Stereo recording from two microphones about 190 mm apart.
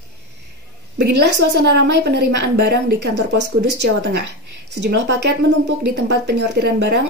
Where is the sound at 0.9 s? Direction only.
65° right (ahead or behind).